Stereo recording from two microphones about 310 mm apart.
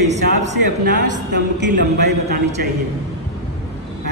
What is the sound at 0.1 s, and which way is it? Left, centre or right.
Speech, right.